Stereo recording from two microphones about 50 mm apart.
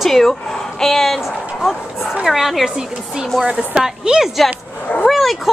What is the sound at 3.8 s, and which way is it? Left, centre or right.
Speech, centre.